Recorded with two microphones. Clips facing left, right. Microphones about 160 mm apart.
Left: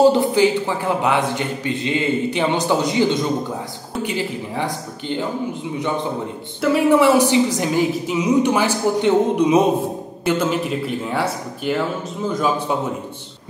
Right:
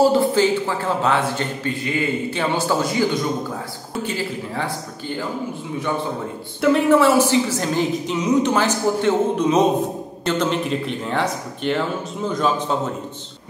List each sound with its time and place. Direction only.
0.0 s a man's voice: 15° left (ahead or behind)
6.6 s a man's voice: 10° left (ahead or behind)